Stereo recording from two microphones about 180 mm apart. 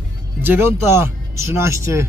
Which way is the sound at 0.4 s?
10° right (ahead or behind).